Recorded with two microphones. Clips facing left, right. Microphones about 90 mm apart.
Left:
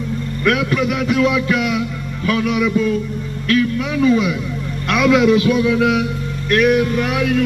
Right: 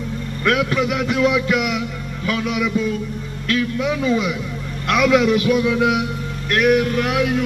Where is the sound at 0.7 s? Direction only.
10° right (ahead or behind).